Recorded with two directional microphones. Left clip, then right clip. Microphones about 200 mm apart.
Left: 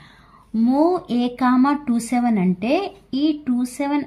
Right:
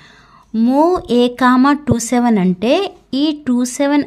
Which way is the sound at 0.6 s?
40° right (ahead or behind).